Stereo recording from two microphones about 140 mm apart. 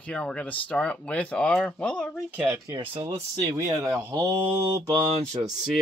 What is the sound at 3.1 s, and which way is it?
Speech, 20° right (ahead or behind).